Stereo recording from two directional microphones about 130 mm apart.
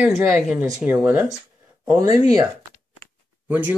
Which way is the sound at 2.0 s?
25° right (ahead or behind).